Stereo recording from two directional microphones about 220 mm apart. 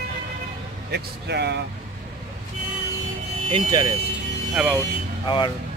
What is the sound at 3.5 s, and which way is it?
Speech, 20° right (ahead or behind).